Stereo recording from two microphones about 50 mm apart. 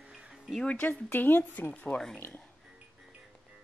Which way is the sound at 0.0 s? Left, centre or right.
Centre.